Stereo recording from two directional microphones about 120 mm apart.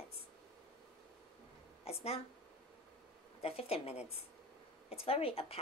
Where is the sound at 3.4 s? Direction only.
55° left (ahead or behind).